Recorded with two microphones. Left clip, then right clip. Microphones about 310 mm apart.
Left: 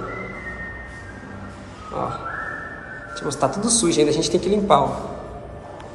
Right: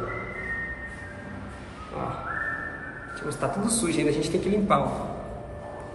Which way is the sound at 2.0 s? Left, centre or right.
Centre.